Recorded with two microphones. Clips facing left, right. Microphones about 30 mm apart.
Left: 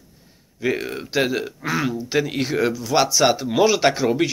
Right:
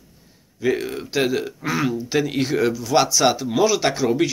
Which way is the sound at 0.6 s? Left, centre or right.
Centre.